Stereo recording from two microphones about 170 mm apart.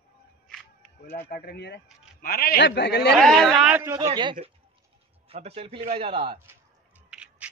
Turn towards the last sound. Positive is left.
turn(degrees=-5)  # may be behind; listen again after turning